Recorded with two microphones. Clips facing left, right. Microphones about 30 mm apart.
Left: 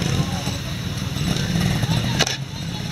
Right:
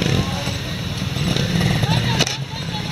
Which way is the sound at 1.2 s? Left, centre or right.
Right.